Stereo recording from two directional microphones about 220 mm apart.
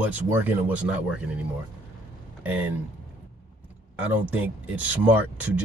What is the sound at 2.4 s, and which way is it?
Speech, 5° right (ahead or behind).